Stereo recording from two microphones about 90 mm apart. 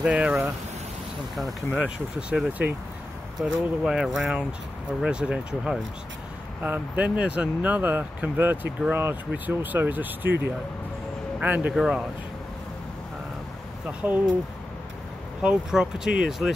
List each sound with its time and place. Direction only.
0.0 s speech: 15° right (ahead or behind)
2.1 s speech: 10° right (ahead or behind)
6.6 s speech: 15° right (ahead or behind)
11.7 s speech: 5° right (ahead or behind)
13.8 s speech: 20° right (ahead or behind)
15.4 s speech: 5° right (ahead or behind)